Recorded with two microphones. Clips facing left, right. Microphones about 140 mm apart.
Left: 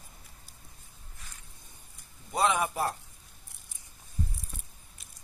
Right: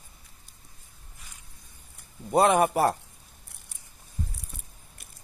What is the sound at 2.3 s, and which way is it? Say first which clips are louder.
Speech: right 7 dB; 60° right (ahead or behind).